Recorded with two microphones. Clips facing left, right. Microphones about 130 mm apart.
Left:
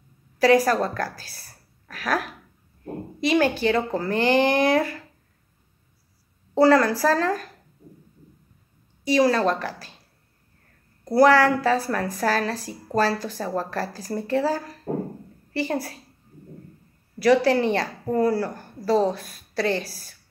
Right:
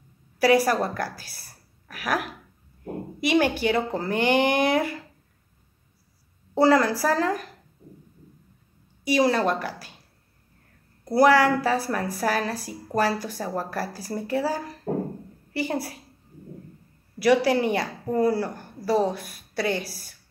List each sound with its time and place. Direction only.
0.4 s a woman's voice: 10° right (ahead or behind)
6.6 s a woman's voice: 15° right (ahead or behind)
9.0 s a woman's voice: 15° right (ahead or behind)
11.1 s a woman's voice: 15° right (ahead or behind)
17.2 s a woman's voice: 10° right (ahead or behind)